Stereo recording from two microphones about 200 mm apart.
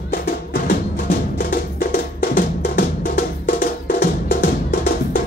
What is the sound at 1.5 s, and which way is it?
Music, 45° left (ahead or behind).